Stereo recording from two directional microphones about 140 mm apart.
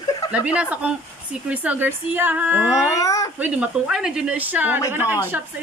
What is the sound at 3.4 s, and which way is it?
Speech, 10° right (ahead or behind).